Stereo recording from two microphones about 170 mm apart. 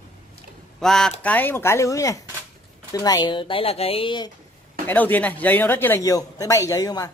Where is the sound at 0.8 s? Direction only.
5° left (ahead or behind); by 4.3 s 30° left (ahead or behind).